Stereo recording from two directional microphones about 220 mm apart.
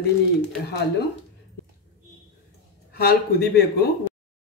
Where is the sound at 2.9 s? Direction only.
45° left (ahead or behind).